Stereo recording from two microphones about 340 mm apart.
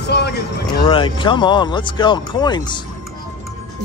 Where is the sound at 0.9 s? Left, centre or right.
Centre.